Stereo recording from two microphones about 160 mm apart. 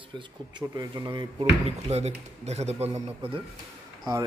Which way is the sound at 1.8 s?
40° right (ahead or behind).